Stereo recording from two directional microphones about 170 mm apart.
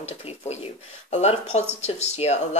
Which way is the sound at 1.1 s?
40° left (ahead or behind).